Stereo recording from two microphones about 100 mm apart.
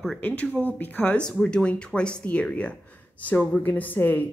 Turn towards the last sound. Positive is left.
turn(degrees=15)  # may be behind; listen again after turning